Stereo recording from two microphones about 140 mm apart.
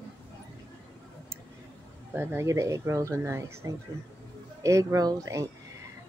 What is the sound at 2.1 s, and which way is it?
Speech, 20° right (ahead or behind).